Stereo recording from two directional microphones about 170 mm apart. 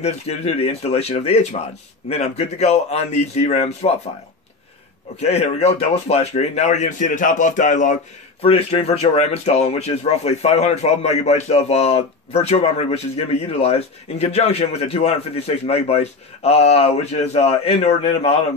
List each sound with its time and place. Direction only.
0.0 s speech: 40° left (ahead or behind)
5.2 s speech: 40° left (ahead or behind)
8.5 s speech: 35° left (ahead or behind)